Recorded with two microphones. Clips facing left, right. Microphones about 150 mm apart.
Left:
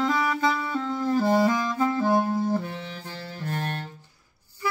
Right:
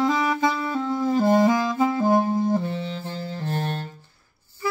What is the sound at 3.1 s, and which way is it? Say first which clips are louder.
Music: right 4 dB; 25° right (ahead or behind).